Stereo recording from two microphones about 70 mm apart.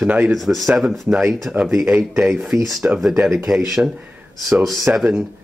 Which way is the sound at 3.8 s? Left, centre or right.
Centre.